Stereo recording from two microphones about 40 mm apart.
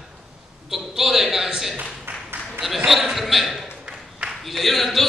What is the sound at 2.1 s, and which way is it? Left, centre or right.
Applause, right.